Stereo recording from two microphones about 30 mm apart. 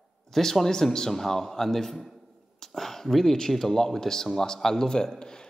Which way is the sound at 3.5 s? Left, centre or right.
Centre.